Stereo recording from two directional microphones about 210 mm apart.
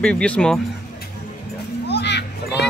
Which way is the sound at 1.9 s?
55° left (ahead or behind).